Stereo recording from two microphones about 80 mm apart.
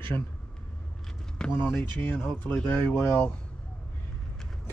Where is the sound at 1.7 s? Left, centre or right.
Centre.